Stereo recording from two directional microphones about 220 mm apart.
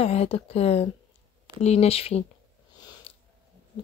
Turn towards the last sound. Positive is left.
turn(degrees=25)  # may be behind; listen again after turning